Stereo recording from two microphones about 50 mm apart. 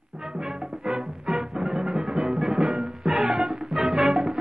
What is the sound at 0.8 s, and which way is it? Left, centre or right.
Music, centre.